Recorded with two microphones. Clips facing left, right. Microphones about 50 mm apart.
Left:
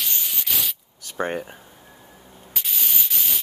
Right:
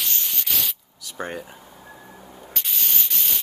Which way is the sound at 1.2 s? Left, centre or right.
Left.